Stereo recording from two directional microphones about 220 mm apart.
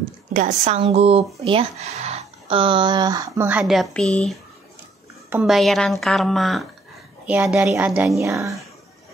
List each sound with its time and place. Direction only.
0.3 s a woman's voice: 30° right (ahead or behind); by 8.5 s 15° right (ahead or behind)